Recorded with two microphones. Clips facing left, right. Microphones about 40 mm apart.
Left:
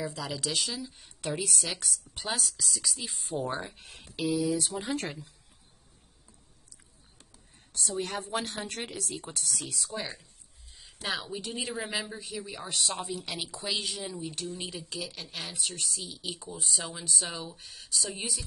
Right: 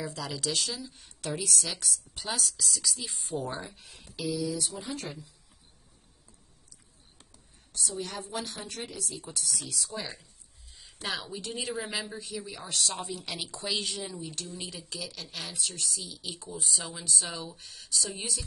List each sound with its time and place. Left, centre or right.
0.0 s speech: centre
3.4 s speech: left
3.8 s a woman's voice: left
7.7 s a woman's voice: left
9.8 s speech: centre